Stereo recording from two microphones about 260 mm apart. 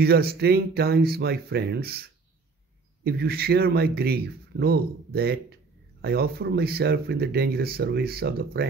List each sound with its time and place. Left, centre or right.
0.0 s speech: right